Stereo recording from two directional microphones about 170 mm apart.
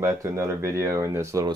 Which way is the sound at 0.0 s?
20° right (ahead or behind).